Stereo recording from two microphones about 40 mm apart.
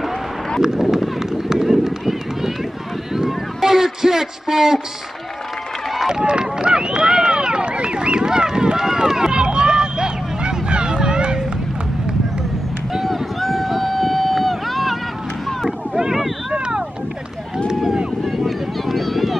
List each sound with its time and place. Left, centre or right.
0.6 s run: centre
3.2 s a sound: centre
6.0 s run: right
13.0 s run: centre
15.6 s boat: centre
16.5 s vehicle: right
18.2 s a sound: centre